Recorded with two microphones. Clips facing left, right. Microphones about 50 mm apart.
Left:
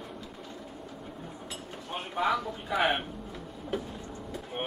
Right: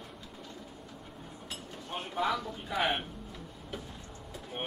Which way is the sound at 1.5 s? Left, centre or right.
Centre.